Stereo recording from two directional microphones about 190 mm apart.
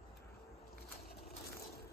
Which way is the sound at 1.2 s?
55° left (ahead or behind).